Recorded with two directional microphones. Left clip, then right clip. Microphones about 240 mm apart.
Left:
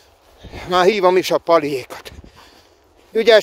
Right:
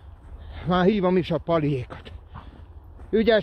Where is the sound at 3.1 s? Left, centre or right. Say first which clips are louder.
Left 8 dB; left.